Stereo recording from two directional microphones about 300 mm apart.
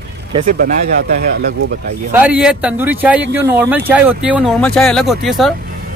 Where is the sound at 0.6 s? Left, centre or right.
Right.